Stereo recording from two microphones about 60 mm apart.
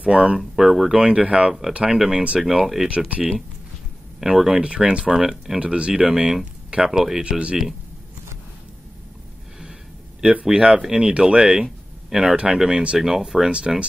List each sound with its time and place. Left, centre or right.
0.0 s speech: centre
0.4 s speech: centre
4.2 s speech: centre
6.0 s speech: centre
7.2 s speech: centre
10.4 s speech: centre
11.6 s a sound: centre
12.4 s speech: centre